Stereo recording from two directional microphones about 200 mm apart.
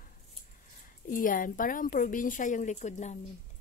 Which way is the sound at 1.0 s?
40° left (ahead or behind).